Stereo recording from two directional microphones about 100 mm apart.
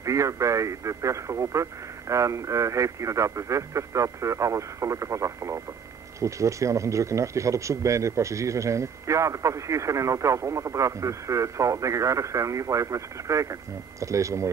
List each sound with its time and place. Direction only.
0.0 s speech: 30° right (ahead or behind)